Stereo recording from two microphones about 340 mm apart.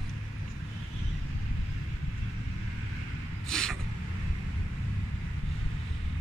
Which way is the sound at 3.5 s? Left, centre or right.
Centre.